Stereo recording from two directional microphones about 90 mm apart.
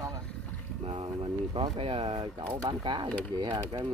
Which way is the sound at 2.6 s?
60° right (ahead or behind).